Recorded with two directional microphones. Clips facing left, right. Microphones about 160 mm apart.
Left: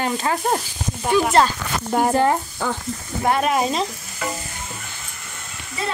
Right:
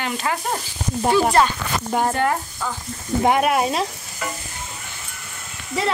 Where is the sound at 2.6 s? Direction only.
75° left (ahead or behind).